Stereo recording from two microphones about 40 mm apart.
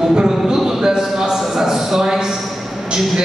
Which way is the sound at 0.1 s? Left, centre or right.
Centre.